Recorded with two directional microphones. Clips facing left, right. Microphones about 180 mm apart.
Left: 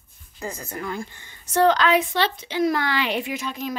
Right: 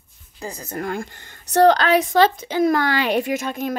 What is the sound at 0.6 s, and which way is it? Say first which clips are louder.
Speech: right 8 dB; 45° right (ahead or behind).